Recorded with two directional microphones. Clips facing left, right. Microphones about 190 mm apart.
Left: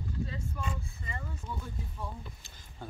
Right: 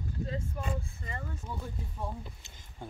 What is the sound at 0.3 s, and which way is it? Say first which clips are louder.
Speech: right 3 dB; 50° right (ahead or behind).